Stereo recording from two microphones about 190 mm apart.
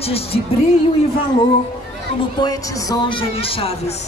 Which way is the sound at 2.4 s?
20° left (ahead or behind).